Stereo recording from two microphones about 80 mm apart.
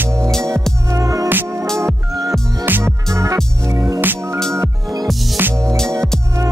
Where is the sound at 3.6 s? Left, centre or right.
Right.